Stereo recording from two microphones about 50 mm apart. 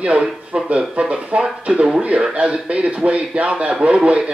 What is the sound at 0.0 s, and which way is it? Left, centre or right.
A man's voice, right.